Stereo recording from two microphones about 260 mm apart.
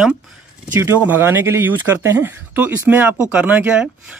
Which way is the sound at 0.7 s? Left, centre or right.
Centre.